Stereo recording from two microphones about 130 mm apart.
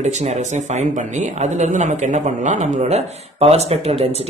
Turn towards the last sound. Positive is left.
turn(degrees=-50)  # may be behind; listen again after turning